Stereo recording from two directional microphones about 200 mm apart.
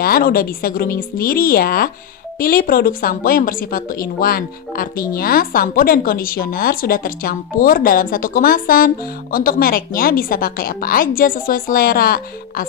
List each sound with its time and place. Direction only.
0.0 s a woman's voice: 45° left (ahead or behind)